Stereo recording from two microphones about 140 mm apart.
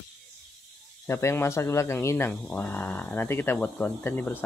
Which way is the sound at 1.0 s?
20° left (ahead or behind).